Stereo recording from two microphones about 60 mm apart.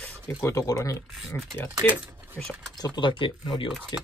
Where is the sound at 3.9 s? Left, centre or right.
Left.